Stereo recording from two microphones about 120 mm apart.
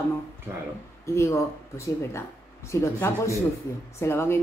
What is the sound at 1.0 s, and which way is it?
A woman's voice, 25° left (ahead or behind).